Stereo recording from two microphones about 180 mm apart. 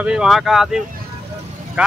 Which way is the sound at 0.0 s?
5° right (ahead or behind).